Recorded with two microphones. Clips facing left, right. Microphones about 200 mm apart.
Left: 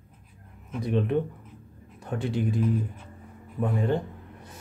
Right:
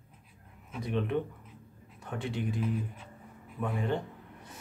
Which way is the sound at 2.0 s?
35° left (ahead or behind).